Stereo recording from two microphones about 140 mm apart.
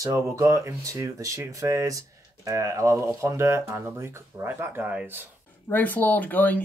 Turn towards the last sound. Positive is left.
turn(degrees=10)  # may be behind; listen again after turning